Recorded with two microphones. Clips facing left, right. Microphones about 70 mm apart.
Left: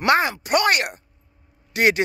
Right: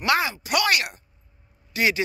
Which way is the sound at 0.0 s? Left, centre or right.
Left.